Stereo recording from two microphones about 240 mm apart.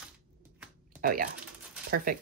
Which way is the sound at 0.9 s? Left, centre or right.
Right.